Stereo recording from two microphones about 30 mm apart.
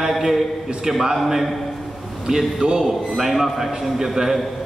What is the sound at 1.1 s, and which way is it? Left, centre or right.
Speech, centre.